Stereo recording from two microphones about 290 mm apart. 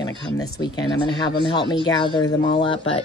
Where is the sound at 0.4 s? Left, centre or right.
Centre.